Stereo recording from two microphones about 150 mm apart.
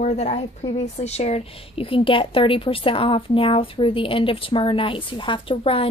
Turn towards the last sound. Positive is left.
turn(degrees=40)  # may be behind; listen again after turning